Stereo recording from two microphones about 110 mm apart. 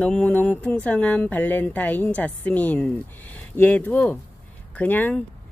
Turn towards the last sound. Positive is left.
turn(degrees=15)  # may be behind; listen again after turning